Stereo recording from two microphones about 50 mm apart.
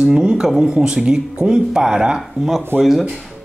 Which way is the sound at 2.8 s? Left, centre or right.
Centre.